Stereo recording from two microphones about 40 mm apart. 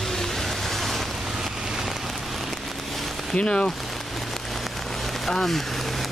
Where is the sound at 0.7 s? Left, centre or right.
Centre.